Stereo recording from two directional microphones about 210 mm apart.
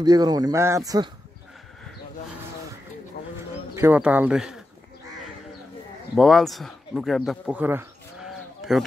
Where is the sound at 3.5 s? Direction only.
10° right (ahead or behind).